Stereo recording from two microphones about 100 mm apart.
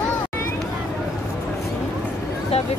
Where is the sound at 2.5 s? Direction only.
90° left.